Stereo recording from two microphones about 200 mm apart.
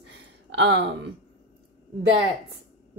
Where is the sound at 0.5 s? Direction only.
60° right (ahead or behind).